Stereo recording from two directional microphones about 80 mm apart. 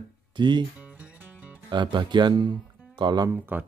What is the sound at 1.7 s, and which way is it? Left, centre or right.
Speech, right.